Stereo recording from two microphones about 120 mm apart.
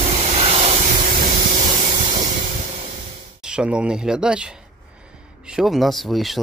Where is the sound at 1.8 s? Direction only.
45° right (ahead or behind).